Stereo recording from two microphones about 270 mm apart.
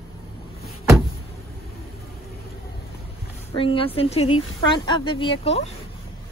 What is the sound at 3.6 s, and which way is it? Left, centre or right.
A woman's voice, centre.